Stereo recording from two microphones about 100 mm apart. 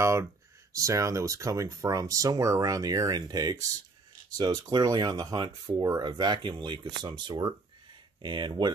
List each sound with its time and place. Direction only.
0.0 s speech: 30° right (ahead or behind); by 8.7 s 45° right (ahead or behind)